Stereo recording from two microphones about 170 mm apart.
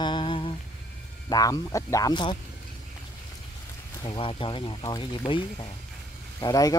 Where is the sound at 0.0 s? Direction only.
25° left (ahead or behind).